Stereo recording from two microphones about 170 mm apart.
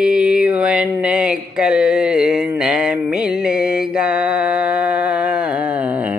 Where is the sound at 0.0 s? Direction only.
5° right (ahead or behind).